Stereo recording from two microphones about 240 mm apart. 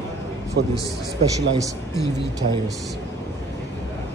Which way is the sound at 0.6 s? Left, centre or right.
Right.